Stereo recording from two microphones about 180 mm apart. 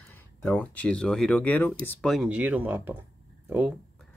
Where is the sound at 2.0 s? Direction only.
Centre (ahead or behind).